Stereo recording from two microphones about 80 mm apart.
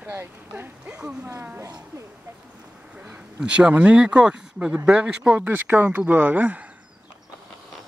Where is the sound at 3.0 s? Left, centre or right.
Centre.